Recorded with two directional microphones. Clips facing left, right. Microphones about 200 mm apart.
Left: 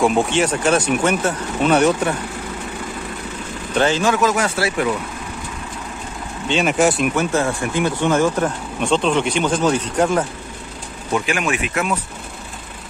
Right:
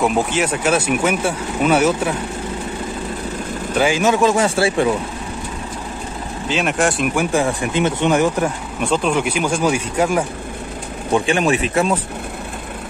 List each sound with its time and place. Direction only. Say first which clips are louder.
0.0 s speech: left 1 dB; 5° right (ahead or behind)
3.7 s speech: right 1 dB; 10° right (ahead or behind)
4.1 s speech: right 3 dB; 25° right (ahead or behind)
6.4 s speech: left 2 dB; centre (ahead or behind)
7.2 s speech: right 1 dB; 15° right (ahead or behind)
11.1 s speech: right 4 dB; 30° right (ahead or behind)